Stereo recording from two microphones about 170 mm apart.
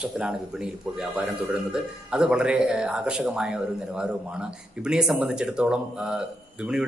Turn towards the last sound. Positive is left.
turn(degrees=-5)  # may be behind; listen again after turning